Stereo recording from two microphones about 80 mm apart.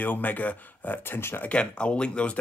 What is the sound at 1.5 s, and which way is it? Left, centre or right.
Speech, centre.